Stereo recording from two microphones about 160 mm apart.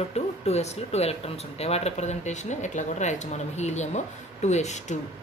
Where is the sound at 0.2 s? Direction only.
40° left (ahead or behind).